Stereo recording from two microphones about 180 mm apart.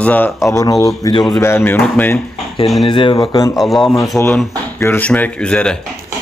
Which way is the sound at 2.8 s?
25° left (ahead or behind).